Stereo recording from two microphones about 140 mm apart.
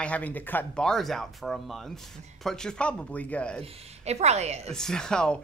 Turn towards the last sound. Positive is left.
turn(degrees=5)  # may be behind; listen again after turning